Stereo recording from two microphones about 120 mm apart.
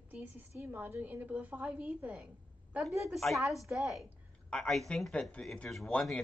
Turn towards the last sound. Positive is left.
turn(degrees=10)  # may be behind; listen again after turning